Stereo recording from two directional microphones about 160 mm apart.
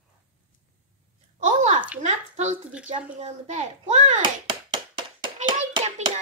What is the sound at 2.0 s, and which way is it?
A child's voice, 50° right (ahead or behind).